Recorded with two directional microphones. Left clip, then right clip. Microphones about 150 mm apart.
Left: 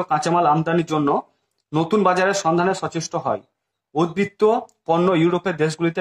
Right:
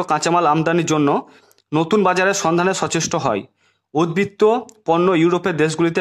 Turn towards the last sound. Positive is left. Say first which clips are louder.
# right 3 dB
turn(degrees=-40)  # may be behind; listen again after turning